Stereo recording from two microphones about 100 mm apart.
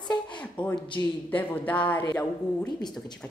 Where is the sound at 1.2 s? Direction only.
15° left (ahead or behind).